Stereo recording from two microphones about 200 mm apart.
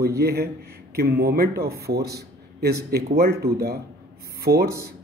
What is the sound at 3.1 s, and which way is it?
Speech, 50° right (ahead or behind).